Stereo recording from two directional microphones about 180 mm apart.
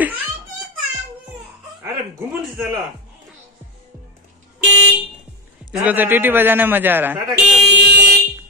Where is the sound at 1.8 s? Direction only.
10° right (ahead or behind).